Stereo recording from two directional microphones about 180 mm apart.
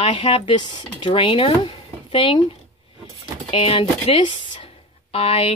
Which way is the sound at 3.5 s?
30° left (ahead or behind).